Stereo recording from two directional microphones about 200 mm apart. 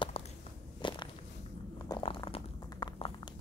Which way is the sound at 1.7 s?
20° left (ahead or behind).